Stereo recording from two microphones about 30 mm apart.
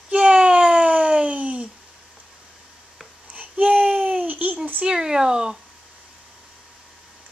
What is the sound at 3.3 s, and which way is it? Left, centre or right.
Babbling, right.